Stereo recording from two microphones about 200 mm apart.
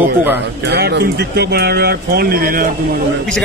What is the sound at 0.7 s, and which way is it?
Speech, 55° right (ahead or behind).